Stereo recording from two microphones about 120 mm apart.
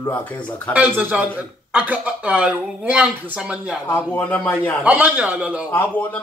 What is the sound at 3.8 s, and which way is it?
Speech, 15° left (ahead or behind).